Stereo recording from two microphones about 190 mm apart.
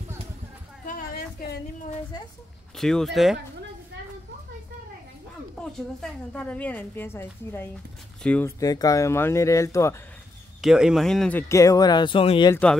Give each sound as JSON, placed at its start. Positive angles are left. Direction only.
{"t": 0.8, "sound": "a sound", "side_deg": 50}
{"t": 2.8, "sound": "speech", "side_deg": 0}
{"t": 5.6, "sound": "a woman's voice", "side_deg": 0}
{"t": 10.6, "sound": "a woman's voice", "side_deg": -5}